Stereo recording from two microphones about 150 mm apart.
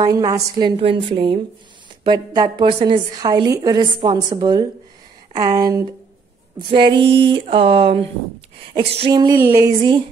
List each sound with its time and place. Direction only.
0.0 s a woman's voice: 25° right (ahead or behind)
2.0 s a woman's voice: 25° right (ahead or behind)
6.7 s a woman's voice: 35° right (ahead or behind)